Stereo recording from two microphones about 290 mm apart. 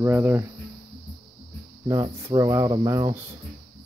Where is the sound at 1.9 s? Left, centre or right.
Centre.